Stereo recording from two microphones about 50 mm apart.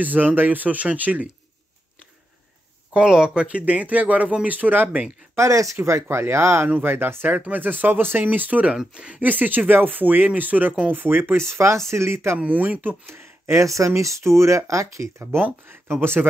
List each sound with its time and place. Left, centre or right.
0.0 s speech: right
2.9 s speech: centre
3.6 s speech: right
4.8 s speech: right
5.3 s speech: right
6.7 s speech: right
7.3 s speech: right
9.2 s speech: right
12.4 s speech: right
13.0 s speech: right
14.7 s speech: right
15.3 s speech: right